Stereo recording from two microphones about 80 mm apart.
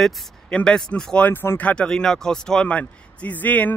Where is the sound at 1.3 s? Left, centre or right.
Left.